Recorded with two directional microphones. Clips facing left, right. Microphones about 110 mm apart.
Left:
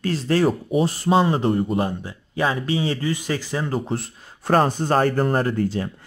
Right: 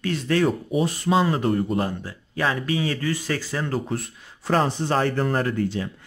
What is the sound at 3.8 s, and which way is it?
Speech, 30° left (ahead or behind).